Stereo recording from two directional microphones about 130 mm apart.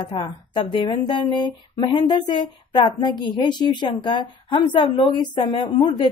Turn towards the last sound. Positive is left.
turn(degrees=30)  # may be behind; listen again after turning